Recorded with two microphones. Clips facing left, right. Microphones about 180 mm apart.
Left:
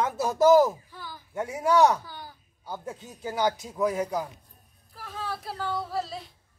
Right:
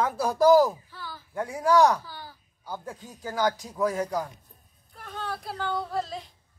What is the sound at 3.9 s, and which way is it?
Speech, 5° left (ahead or behind).